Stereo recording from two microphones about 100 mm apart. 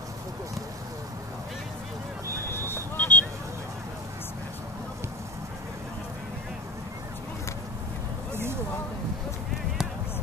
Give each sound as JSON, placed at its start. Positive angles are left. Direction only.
{"t": 2.4, "sound": "vehicle", "side_deg": 25}